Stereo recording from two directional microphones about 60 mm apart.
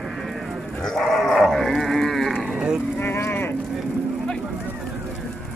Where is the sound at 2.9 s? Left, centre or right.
Left.